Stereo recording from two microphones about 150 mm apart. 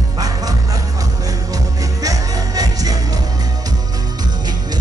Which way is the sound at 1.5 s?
25° right (ahead or behind).